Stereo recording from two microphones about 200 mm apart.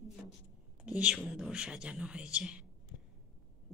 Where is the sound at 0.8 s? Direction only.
5° right (ahead or behind).